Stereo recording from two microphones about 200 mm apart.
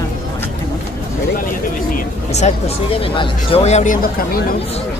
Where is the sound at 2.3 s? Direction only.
35° left (ahead or behind).